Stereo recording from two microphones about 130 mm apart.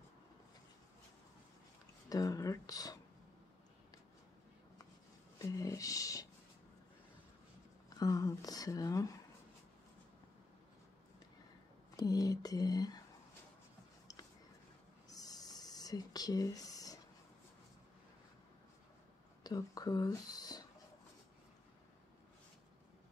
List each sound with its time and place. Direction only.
2.0 s speech: 30° left (ahead or behind)
5.4 s speech: 25° left (ahead or behind)
8.0 s speech: 25° left (ahead or behind)
12.0 s speech: 30° left (ahead or behind)
15.0 s a sound: 30° left (ahead or behind)
19.4 s speech: 30° left (ahead or behind)